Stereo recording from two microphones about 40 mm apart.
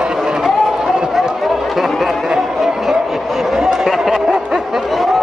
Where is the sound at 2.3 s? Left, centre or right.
Centre.